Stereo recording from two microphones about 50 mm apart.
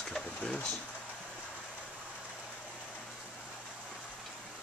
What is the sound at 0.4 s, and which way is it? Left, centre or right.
Speech, centre.